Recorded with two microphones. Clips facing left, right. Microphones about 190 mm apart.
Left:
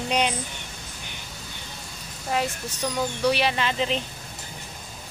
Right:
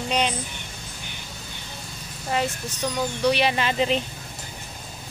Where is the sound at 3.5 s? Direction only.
10° right (ahead or behind).